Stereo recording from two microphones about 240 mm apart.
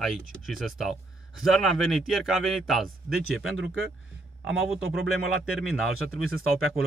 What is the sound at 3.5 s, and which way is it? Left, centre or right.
Speech, right.